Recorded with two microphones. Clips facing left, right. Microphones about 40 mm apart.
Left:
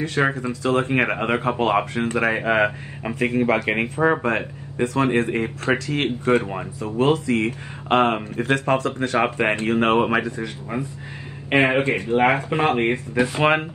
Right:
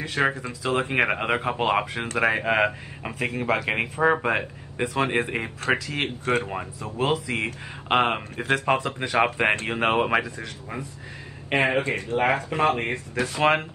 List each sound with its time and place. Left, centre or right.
0.0 s speech: centre
0.7 s speech: centre
0.9 s speech: centre
4.7 s speech: centre
7.0 s speech: centre
8.7 s speech: centre
9.1 s speech: centre
9.9 s speech: centre
11.5 s speech: left